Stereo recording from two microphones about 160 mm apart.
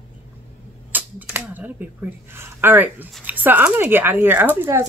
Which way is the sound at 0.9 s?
10° right (ahead or behind).